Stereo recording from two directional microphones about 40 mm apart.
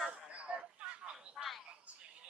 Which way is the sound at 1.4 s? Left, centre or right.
Centre.